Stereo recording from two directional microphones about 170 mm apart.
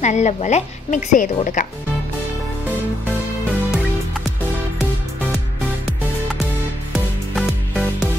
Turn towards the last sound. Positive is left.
turn(degrees=0)  # may be behind; listen again after turning